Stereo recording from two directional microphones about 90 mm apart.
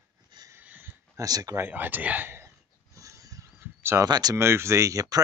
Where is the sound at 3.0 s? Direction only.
40° right (ahead or behind).